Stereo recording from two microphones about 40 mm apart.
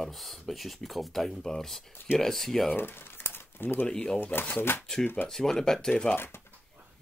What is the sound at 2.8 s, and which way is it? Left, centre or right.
Crumpling, left.